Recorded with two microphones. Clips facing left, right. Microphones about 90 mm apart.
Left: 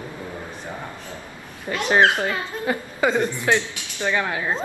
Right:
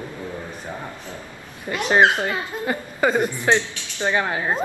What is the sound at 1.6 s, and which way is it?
A child's voice, 15° right (ahead or behind).